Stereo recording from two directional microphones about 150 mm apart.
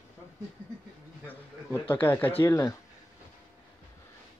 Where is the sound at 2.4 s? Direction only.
20° left (ahead or behind).